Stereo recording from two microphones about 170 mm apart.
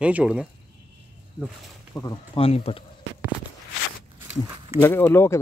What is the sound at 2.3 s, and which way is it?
Speech, 35° left (ahead or behind).